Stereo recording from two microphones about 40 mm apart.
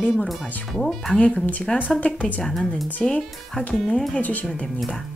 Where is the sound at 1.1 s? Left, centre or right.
Left.